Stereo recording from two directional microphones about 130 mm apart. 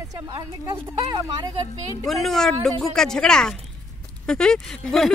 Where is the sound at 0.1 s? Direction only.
30° right (ahead or behind).